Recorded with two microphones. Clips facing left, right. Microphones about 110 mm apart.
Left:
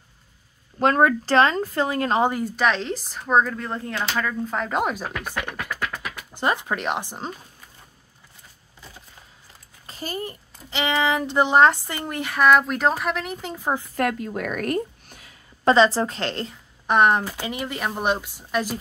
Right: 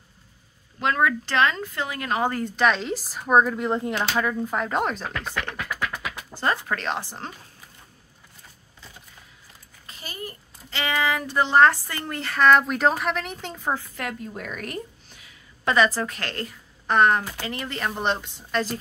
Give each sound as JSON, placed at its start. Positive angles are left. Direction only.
{"t": 0.7, "sound": "speech", "side_deg": 40}
{"t": 2.2, "sound": "speech", "side_deg": 10}
{"t": 9.8, "sound": "a sound", "side_deg": 40}
{"t": 10.2, "sound": "speech", "side_deg": 20}
{"t": 14.2, "sound": "a sound", "side_deg": 70}
{"t": 15.7, "sound": "a woman's voice", "side_deg": 25}